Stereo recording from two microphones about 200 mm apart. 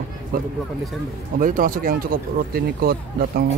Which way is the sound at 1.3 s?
45° right (ahead or behind).